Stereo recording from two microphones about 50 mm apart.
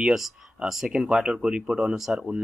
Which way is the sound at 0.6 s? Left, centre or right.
Centre.